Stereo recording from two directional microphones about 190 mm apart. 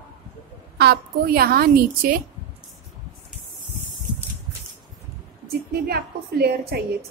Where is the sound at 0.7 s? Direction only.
55° right (ahead or behind).